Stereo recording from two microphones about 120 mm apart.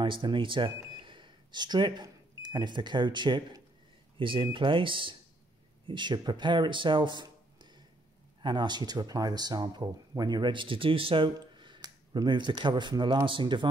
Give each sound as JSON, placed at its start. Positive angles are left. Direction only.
{"t": 0.0, "sound": "speech", "side_deg": -45}
{"t": 8.4, "sound": "speech", "side_deg": -40}